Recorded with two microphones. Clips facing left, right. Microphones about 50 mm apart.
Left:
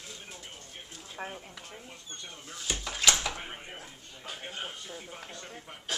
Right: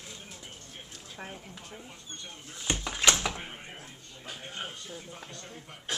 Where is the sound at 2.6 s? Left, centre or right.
Right.